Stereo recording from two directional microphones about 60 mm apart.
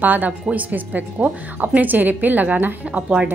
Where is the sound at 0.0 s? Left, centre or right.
Right.